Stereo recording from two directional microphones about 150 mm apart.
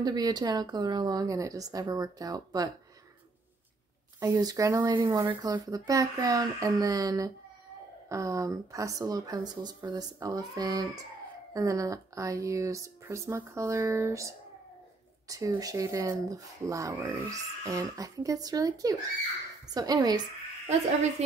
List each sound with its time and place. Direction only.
0.0 s speech: 25° right (ahead or behind)
4.2 s speech: 25° right (ahead or behind)